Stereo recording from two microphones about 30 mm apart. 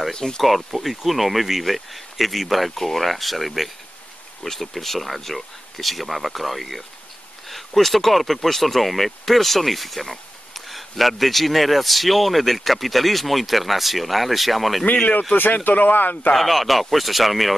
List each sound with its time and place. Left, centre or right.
0.1 s speech: centre
0.4 s speech: centre
15.4 s speech: left
16.3 s speech: centre